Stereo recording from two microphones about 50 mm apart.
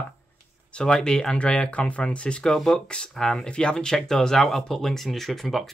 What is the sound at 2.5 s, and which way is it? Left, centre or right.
Speech, centre.